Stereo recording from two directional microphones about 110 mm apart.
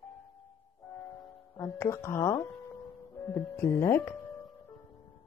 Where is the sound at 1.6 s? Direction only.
25° left (ahead or behind).